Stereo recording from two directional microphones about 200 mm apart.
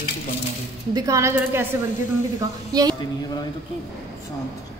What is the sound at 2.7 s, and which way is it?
Speech, 20° right (ahead or behind).